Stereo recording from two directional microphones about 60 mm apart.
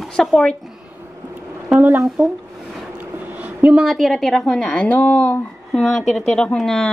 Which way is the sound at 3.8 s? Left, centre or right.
Centre.